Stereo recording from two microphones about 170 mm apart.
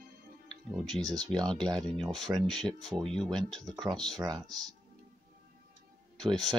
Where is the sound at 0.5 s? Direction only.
5° left (ahead or behind).